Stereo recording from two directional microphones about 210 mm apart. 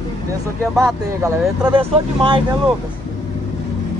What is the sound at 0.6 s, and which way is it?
Speech, centre (ahead or behind).